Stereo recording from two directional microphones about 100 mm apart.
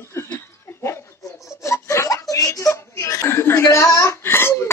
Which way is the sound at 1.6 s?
30° left (ahead or behind).